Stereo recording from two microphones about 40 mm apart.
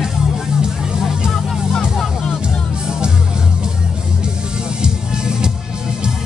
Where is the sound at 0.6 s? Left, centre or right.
Centre.